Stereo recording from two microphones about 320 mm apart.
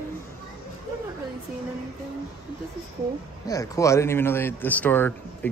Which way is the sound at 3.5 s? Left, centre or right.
Centre.